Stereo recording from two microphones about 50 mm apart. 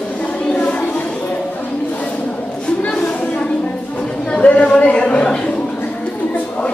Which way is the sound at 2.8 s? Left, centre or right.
Left.